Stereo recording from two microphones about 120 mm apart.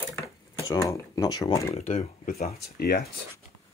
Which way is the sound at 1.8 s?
70° left (ahead or behind).